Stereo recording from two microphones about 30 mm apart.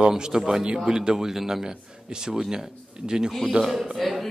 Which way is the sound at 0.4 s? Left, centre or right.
Centre.